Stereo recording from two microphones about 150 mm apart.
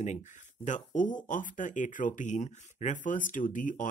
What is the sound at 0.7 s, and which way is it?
Speech, 55° left (ahead or behind).